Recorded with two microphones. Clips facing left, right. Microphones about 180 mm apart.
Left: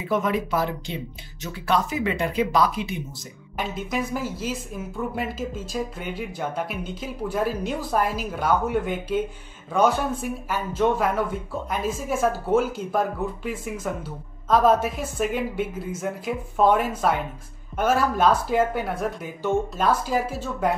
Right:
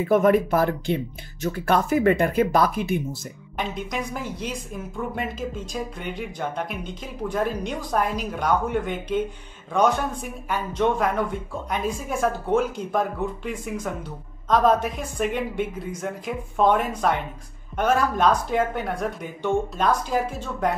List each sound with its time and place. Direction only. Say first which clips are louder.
0.0 s speech: right 6 dB; 50° right (ahead or behind)
3.5 s a woman's voice: left 1 dB; 5° left (ahead or behind)